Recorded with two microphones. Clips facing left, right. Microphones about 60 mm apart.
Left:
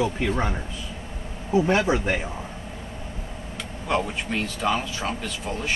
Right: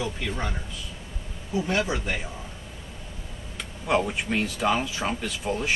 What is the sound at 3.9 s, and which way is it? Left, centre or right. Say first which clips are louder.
Speech: right 1 dB; centre.